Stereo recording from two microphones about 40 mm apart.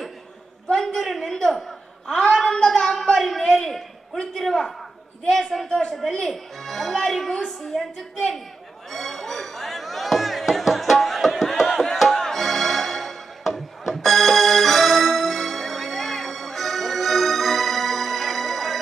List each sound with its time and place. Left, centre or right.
0.7 s a sound: centre
2.1 s a woman's voice: centre
5.7 s a woman's voice: centre
8.9 s music: centre
11.7 s music: centre